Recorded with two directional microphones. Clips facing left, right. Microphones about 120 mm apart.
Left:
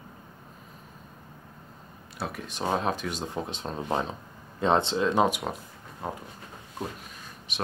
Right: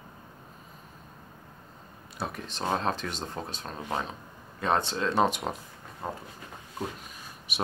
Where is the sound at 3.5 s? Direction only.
25° left (ahead or behind).